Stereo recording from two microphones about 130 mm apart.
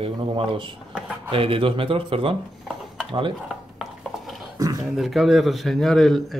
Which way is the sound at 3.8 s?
Centre (ahead or behind).